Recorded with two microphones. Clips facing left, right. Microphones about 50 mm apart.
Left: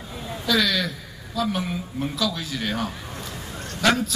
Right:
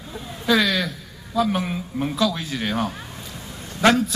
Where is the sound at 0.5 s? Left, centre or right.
Right.